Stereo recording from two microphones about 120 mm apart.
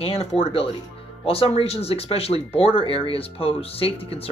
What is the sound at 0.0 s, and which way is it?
Speech, 55° left (ahead or behind).